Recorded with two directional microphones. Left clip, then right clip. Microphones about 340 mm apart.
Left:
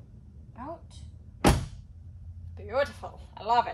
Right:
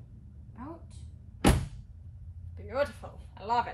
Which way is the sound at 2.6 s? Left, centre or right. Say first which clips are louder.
Left 3 dB; centre.